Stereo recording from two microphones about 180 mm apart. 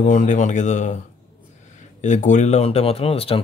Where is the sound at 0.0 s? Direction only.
45° left (ahead or behind).